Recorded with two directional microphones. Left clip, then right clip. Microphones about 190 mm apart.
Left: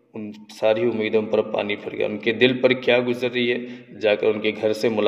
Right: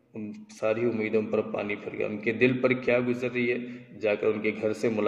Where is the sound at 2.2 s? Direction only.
10° right (ahead or behind).